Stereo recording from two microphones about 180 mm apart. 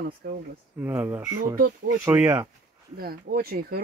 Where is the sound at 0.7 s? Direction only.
10° right (ahead or behind).